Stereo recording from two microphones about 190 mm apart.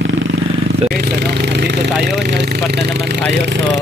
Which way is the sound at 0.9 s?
55° right (ahead or behind).